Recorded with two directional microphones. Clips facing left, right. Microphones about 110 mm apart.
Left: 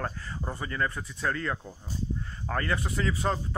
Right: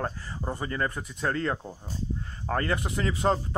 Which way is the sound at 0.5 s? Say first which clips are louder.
Right 1 dB; 35° right (ahead or behind).